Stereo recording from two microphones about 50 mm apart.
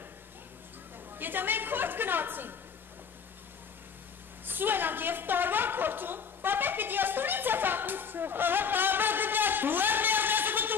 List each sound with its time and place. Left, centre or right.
1.1 s a woman's voice: right
4.5 s a woman's voice: right